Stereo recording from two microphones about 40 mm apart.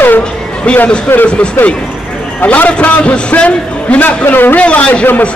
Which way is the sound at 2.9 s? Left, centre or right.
Left.